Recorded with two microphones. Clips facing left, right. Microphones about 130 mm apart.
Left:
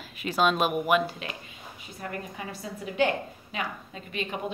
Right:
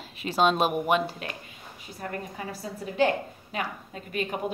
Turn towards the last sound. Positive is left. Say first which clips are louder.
# right 2 dB
turn(degrees=-45)  # may be behind; listen again after turning